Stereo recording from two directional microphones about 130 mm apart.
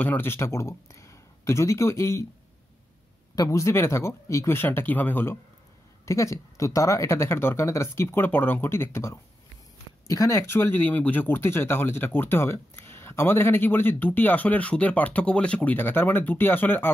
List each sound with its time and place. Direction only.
0.0 s speech: 15° left (ahead or behind)
3.3 s speech: 25° left (ahead or behind)